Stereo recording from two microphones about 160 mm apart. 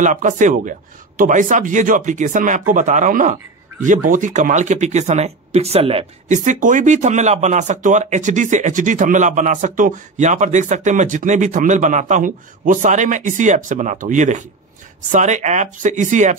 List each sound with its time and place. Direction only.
0.0 s speech: 55° right (ahead or behind)